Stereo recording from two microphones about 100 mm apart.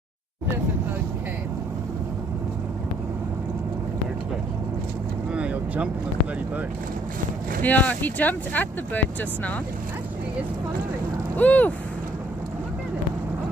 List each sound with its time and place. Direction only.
5.3 s vehicle: 10° right (ahead or behind)
7.6 s speech: 15° left (ahead or behind)
11.3 s speech: 15° left (ahead or behind)